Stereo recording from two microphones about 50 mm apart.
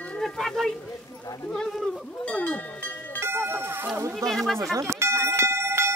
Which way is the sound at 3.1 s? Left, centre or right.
Right.